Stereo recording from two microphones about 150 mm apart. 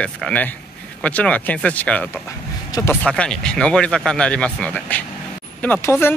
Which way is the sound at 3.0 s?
5° left (ahead or behind).